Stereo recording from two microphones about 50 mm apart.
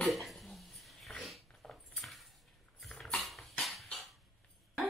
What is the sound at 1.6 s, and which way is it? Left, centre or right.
Dog, centre.